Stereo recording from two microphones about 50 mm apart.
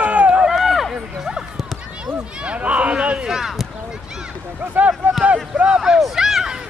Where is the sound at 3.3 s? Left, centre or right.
Centre.